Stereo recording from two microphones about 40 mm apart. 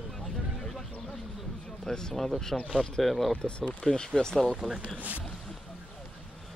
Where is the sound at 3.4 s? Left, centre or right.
Left.